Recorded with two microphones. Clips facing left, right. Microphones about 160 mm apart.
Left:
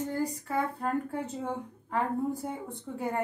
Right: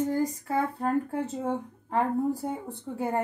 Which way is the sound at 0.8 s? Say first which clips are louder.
Right 4 dB; 35° right (ahead or behind).